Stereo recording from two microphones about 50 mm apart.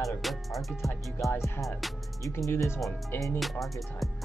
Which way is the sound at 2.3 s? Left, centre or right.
Left.